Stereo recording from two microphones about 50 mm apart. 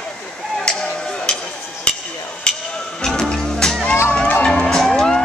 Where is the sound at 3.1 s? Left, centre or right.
Centre.